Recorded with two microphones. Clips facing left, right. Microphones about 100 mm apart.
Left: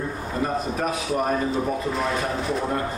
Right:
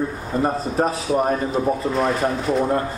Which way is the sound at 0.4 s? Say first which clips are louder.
Right 5 dB; 35° right (ahead or behind).